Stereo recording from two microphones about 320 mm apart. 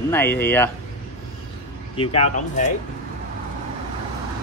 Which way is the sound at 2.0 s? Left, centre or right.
Centre.